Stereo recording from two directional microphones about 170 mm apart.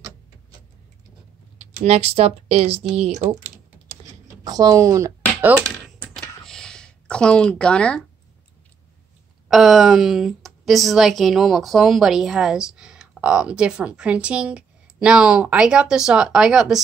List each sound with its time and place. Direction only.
1.6 s speech: 40° right (ahead or behind)
4.5 s speech: 20° right (ahead or behind)
6.1 s a sound: centre (ahead or behind)
9.5 s a woman's voice: centre (ahead or behind)